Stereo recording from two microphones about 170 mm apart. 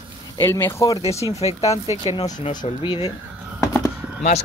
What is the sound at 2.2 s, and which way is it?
Speech, 25° left (ahead or behind).